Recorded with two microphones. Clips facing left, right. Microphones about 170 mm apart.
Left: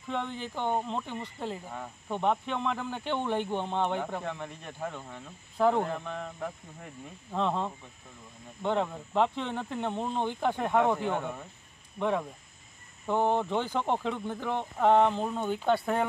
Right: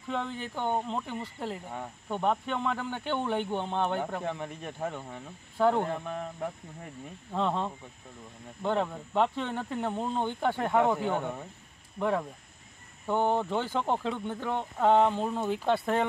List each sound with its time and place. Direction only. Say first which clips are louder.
0.1 s speech: even; centre (ahead or behind)
4.2 s speech: right 2 dB; 15° right (ahead or behind)
5.6 s speech: even; centre (ahead or behind)